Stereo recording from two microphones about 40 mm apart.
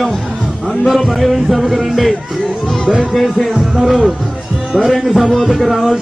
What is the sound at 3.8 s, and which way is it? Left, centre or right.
Music, centre.